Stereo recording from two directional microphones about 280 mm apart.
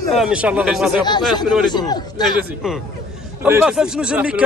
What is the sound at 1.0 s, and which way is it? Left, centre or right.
Speech, centre.